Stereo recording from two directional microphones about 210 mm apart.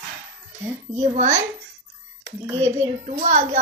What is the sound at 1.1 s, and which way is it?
Speech, 35° right (ahead or behind).